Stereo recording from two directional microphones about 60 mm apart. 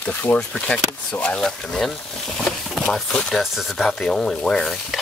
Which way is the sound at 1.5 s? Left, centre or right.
Centre.